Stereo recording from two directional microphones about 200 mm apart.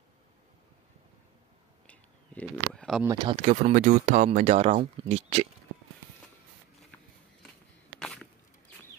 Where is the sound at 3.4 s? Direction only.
35° right (ahead or behind).